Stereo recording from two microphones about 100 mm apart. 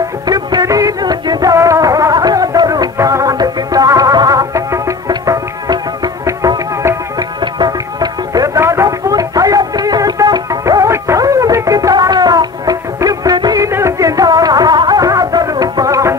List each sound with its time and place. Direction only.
0.3 s music: 40° right (ahead or behind)
8.5 s music: 30° right (ahead or behind)
13.7 s music: 30° right (ahead or behind)